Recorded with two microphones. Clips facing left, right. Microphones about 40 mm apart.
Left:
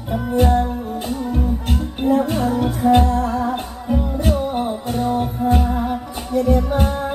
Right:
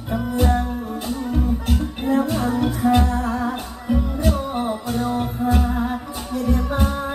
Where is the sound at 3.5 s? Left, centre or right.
Left.